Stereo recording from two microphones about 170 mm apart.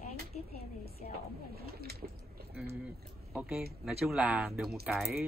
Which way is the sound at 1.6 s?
70° right (ahead or behind).